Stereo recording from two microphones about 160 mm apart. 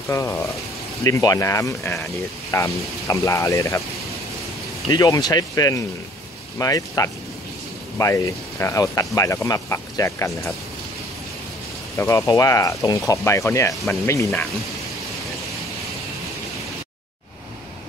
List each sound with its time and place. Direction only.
0.1 s speech: 20° left (ahead or behind)
4.8 s speech: 20° left (ahead or behind)
12.0 s speech: 20° left (ahead or behind)